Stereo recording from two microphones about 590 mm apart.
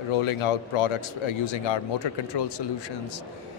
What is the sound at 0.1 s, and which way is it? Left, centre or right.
Speech, left.